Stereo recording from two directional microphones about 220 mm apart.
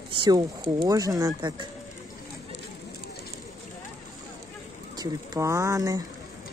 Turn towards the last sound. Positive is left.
turn(degrees=-15)  # may be behind; listen again after turning